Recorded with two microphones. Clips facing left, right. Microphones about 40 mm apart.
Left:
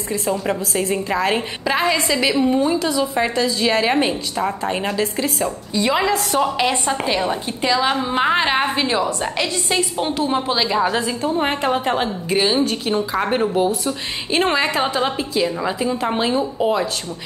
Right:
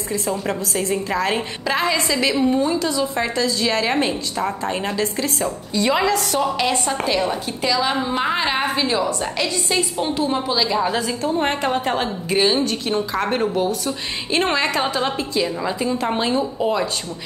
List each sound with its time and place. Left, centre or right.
0.3 s a woman's voice: centre
5.4 s a woman's voice: centre